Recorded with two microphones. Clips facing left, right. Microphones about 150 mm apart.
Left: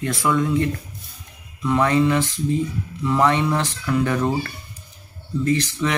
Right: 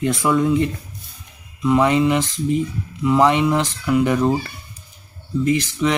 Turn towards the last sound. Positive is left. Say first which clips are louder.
# right 2 dB
turn(degrees=-15)  # may be behind; listen again after turning